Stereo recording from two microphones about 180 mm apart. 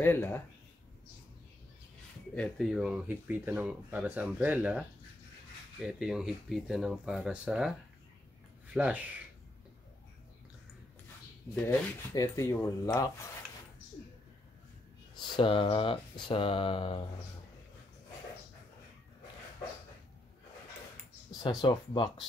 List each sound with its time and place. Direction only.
0.0 s speech: 10° left (ahead or behind)
2.3 s speech: centre (ahead or behind)
8.7 s speech: 5° right (ahead or behind)
11.6 s speech: 15° left (ahead or behind)
15.1 s speech: 25° left (ahead or behind)
21.3 s speech: 20° left (ahead or behind)